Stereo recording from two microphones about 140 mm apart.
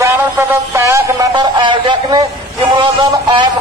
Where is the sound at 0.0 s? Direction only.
15° right (ahead or behind); by 2.2 s 35° right (ahead or behind).